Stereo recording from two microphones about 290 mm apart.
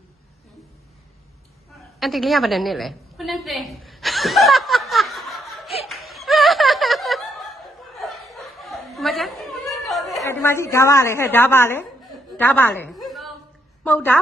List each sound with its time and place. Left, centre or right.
2.0 s a sound: centre
9.8 s chatter: centre
10.2 s a woman's voice: centre